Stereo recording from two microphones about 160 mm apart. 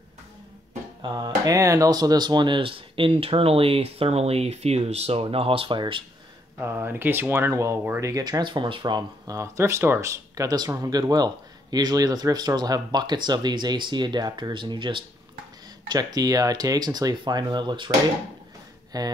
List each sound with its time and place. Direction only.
1.0 s speech: 25° right (ahead or behind)
6.6 s speech: 15° right (ahead or behind)
18.9 s speech: 25° right (ahead or behind)